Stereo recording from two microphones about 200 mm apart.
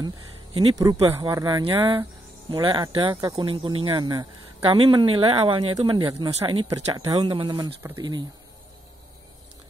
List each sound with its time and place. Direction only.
0.6 s speech: 20° right (ahead or behind)